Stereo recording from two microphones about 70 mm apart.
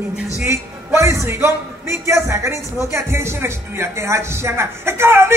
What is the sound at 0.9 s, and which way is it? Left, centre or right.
Speech, right.